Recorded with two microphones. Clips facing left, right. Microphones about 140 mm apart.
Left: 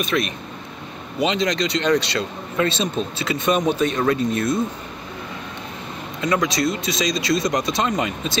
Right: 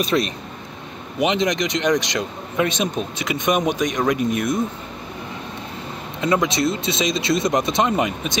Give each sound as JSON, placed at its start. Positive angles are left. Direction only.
{"t": 0.0, "sound": "speech", "side_deg": -30}
{"t": 1.2, "sound": "speech", "side_deg": -20}
{"t": 6.2, "sound": "speech", "side_deg": -25}